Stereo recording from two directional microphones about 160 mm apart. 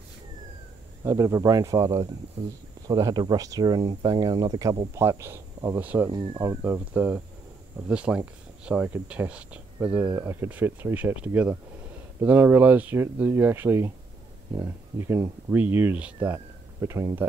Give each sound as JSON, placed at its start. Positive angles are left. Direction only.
{"t": 1.0, "sound": "speech", "side_deg": -20}